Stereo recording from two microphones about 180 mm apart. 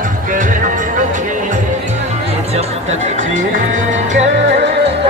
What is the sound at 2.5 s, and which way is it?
Speech, 40° right (ahead or behind).